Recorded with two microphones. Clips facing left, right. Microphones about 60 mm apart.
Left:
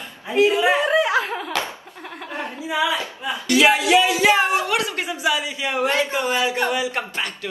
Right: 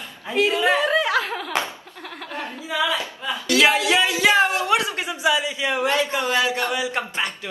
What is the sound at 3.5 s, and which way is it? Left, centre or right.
Speech, left.